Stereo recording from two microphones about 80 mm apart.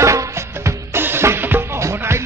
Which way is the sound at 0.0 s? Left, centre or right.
Right.